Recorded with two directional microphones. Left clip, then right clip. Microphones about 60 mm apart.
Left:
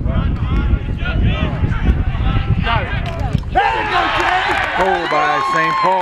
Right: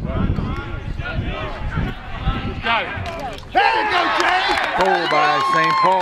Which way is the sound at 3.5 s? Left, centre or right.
Right.